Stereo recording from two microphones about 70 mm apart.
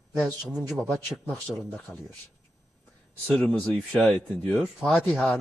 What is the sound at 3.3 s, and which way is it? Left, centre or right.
Speech, centre.